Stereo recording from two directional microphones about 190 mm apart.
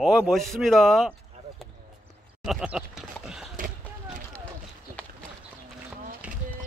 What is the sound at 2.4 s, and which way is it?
Speech, 5° right (ahead or behind).